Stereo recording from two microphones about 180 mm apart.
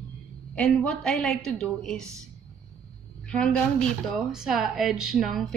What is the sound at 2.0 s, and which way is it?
Speech, 15° right (ahead or behind).